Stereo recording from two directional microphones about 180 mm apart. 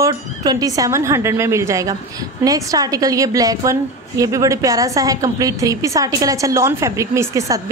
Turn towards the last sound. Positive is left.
turn(degrees=-15)  # may be behind; listen again after turning